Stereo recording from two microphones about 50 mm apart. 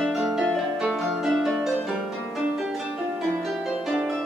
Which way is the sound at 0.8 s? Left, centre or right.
Centre.